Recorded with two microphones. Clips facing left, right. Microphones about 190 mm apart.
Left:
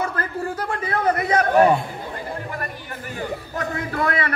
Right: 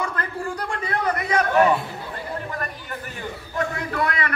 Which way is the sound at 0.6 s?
30° left (ahead or behind).